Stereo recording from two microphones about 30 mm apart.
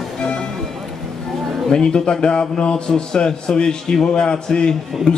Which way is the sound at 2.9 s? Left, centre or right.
Left.